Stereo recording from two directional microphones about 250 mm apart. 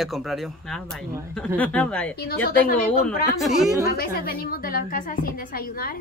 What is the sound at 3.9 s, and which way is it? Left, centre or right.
A woman's voice, left.